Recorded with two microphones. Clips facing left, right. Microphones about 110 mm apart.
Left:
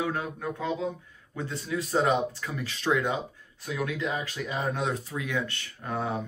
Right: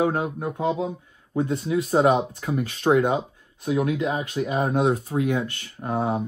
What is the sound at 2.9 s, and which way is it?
Speech, 45° right (ahead or behind).